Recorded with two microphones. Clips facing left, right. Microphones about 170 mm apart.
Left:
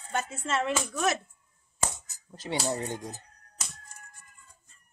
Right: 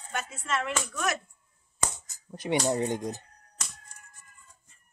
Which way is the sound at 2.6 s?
15° right (ahead or behind).